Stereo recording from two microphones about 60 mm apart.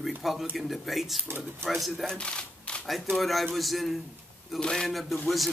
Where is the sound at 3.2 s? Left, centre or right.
Centre.